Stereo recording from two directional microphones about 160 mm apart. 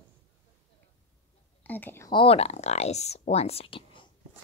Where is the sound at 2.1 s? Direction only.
35° left (ahead or behind).